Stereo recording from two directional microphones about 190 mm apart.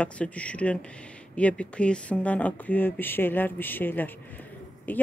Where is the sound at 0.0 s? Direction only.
5° left (ahead or behind).